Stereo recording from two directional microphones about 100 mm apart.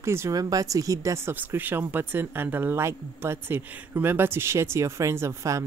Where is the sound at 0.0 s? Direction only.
25° right (ahead or behind).